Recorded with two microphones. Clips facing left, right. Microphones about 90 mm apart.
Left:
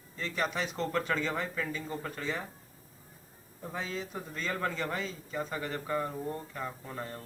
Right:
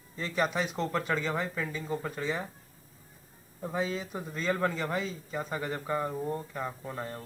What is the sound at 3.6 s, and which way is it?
Speech, 15° right (ahead or behind).